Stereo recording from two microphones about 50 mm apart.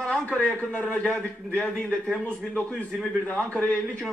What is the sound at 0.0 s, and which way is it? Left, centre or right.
A man's voice, centre.